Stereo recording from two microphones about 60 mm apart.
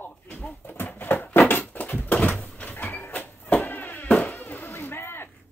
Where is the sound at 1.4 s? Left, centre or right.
Left.